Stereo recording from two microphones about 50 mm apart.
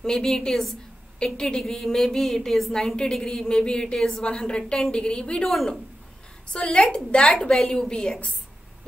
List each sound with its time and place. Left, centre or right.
0.0 s a woman's voice: centre
5.4 s speech: centre
6.5 s a woman's voice: centre
7.5 s a woman's voice: centre